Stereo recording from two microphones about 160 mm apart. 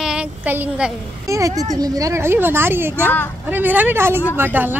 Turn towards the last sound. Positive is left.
turn(degrees=-10)  # may be behind; listen again after turning